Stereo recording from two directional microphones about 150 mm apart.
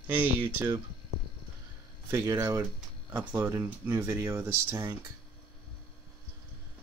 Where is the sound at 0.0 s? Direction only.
10° right (ahead or behind).